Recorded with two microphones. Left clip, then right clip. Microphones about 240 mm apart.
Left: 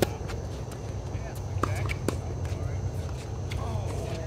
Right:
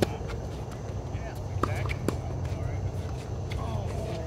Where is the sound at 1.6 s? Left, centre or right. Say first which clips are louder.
Even; centre.